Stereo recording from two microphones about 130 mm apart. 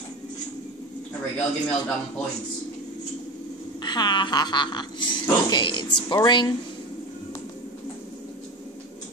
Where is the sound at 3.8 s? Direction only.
35° left (ahead or behind).